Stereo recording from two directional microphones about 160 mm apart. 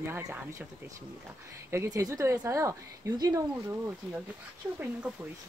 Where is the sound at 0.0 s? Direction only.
15° right (ahead or behind).